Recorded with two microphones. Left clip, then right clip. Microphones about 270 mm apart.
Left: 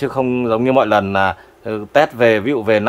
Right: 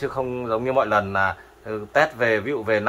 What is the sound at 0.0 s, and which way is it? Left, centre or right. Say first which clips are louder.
A man's voice: left 8 dB; left.